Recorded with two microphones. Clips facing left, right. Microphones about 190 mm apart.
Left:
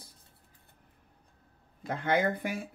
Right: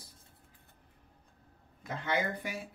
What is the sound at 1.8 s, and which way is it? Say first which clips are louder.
Speech: left 5 dB; 55° left (ahead or behind).